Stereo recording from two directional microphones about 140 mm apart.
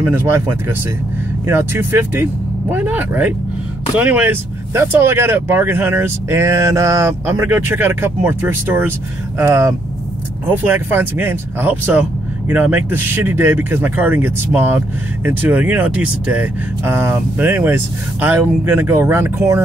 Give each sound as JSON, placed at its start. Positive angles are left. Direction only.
{"t": 0.1, "sound": "speech", "side_deg": -15}